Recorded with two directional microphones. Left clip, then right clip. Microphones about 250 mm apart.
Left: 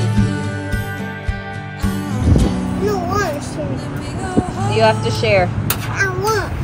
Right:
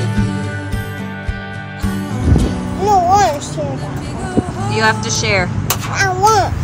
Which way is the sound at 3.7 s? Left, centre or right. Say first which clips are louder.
Right 1 dB; centre.